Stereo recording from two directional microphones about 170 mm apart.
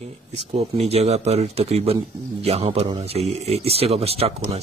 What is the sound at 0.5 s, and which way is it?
A man's voice, 40° right (ahead or behind).